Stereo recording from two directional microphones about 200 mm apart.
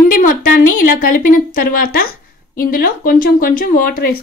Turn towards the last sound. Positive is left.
turn(degrees=45)  # may be behind; listen again after turning